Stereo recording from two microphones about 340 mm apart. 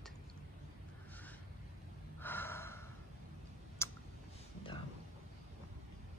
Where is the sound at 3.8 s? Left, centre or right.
Centre.